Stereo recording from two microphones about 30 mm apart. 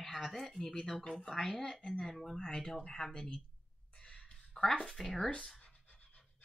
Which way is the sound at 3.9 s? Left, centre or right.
Left.